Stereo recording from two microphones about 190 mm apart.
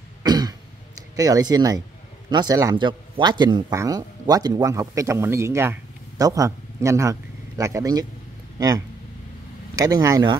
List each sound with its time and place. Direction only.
0.2 s cough: 20° right (ahead or behind)
1.1 s speech: 20° right (ahead or behind)